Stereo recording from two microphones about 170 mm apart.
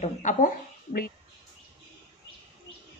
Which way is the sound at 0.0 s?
45° left (ahead or behind).